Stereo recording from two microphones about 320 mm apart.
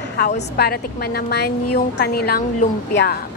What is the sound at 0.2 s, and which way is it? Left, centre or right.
A woman's voice, left.